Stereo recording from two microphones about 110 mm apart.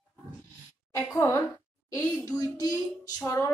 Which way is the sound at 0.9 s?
30° left (ahead or behind).